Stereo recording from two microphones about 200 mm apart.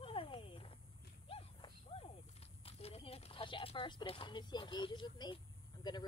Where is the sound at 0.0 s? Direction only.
25° left (ahead or behind).